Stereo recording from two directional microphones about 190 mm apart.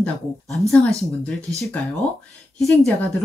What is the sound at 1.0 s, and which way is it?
Speech, 5° left (ahead or behind).